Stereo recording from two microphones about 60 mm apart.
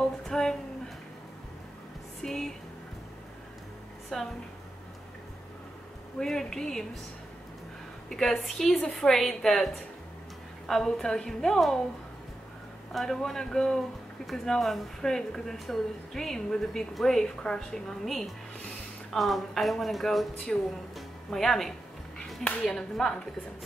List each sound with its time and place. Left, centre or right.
0.0 s a sound: centre
2.2 s music: centre
4.1 s a woman's voice: centre
6.1 s speech: centre
8.1 s a woman's voice: centre
12.9 s a woman's voice: centre
20.9 s music: centre
22.4 s speech: centre
22.8 s speech: centre